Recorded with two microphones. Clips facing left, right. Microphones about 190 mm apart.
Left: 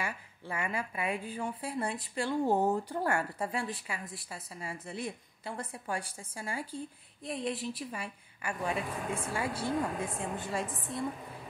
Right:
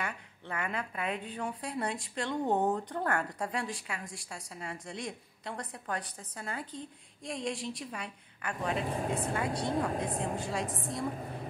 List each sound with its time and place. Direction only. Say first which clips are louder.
0.0 s a woman's voice: even; 5° left (ahead or behind)
8.8 s speech: right 3 dB; 30° right (ahead or behind)
9.3 s a woman's voice: right 1 dB; 5° left (ahead or behind)
9.7 s speech: right 1 dB; 35° right (ahead or behind)
10.4 s a woman's voice: right 1 dB; 5° left (ahead or behind)
10.7 s a woman's voice: right 1 dB; 40° right (ahead or behind)